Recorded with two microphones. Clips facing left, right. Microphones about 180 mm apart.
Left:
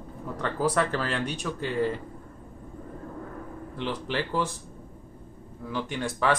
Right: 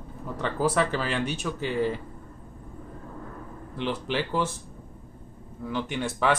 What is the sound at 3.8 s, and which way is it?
Speech, 5° right (ahead or behind).